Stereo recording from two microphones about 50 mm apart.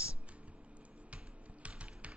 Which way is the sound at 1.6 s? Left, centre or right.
Right.